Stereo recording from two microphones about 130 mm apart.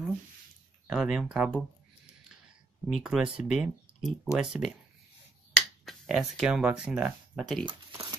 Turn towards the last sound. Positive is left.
turn(degrees=0)  # may be behind; listen again after turning